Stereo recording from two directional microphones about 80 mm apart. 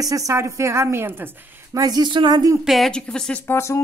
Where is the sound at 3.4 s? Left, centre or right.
Left.